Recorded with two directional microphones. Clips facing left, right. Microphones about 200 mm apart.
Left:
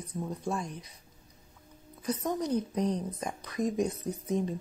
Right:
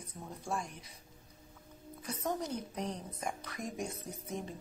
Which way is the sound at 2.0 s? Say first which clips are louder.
Left 6 dB; 20° left (ahead or behind).